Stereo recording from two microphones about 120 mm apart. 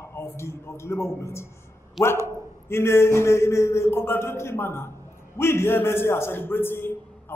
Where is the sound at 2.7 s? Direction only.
20° left (ahead or behind).